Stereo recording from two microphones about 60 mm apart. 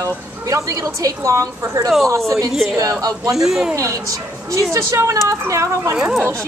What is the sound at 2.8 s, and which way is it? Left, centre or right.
Speech, right.